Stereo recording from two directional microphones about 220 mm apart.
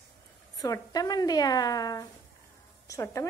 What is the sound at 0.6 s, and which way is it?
A woman's voice, 15° left (ahead or behind).